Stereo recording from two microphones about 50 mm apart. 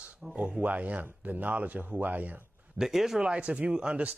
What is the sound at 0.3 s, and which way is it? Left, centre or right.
A man's voice, right.